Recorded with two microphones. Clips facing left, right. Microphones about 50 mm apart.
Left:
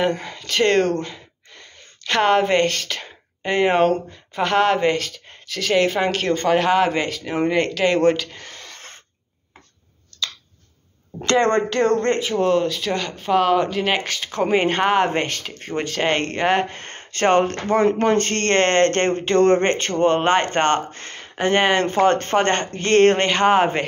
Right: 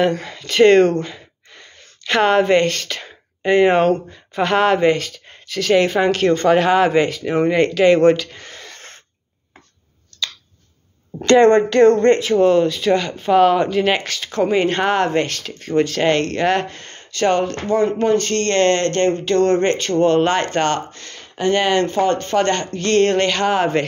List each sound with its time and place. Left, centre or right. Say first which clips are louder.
0.2 s speech: right 7 dB; centre
12.4 s speech: right 5 dB; centre; by 16.8 s left
16.8 s speech: right 1 dB; left
21.9 s speech: left 1 dB; left
22.4 s speech: right 1 dB; left